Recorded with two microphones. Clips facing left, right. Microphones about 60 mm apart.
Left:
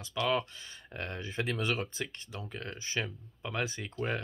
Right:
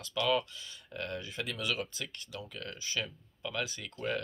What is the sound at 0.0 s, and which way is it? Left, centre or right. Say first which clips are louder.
Speech: even; left.